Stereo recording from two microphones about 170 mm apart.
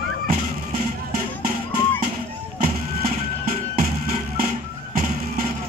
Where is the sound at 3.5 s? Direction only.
55° right (ahead or behind).